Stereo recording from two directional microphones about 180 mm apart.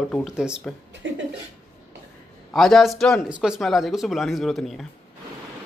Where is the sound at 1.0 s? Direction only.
90° right.